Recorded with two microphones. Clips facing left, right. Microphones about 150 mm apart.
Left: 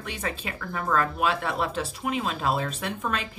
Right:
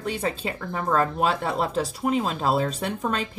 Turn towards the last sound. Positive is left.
turn(degrees=-35)  # may be behind; listen again after turning